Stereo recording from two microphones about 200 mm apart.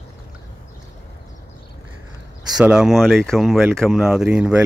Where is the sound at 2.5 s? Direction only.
5° right (ahead or behind).